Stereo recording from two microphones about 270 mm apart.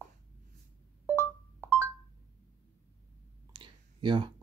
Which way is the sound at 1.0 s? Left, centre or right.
Centre.